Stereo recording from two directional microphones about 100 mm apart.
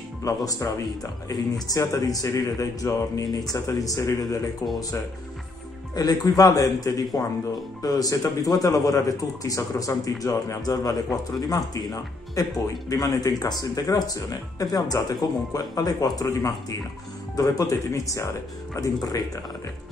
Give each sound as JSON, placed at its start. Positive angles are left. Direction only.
{"t": 0.2, "sound": "a man's voice", "side_deg": 35}
{"t": 5.9, "sound": "a man's voice", "side_deg": 40}